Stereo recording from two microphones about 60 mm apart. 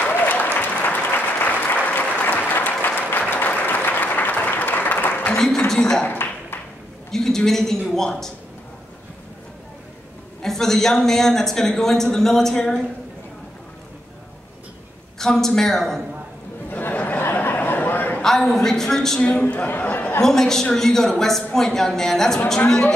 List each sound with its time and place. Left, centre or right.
0.0 s applause: left
5.7 s speech: centre
6.0 s a sound: left
7.1 s speech: centre
10.4 s speech: centre
15.1 s speech: centre
16.7 s a sound: left
18.2 s speech: centre
19.4 s speech: left
20.2 s speech: centre